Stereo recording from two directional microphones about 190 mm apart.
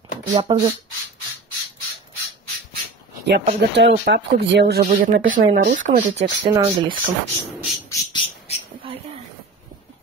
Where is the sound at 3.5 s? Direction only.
65° right (ahead or behind).